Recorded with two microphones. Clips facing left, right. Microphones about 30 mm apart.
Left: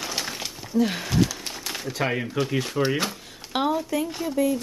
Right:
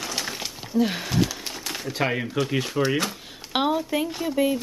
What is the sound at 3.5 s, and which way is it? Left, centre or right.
Speech, right.